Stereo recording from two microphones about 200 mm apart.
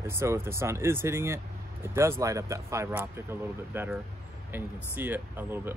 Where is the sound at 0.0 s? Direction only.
10° right (ahead or behind).